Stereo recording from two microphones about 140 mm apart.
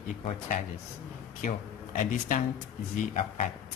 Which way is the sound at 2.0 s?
70° left (ahead or behind).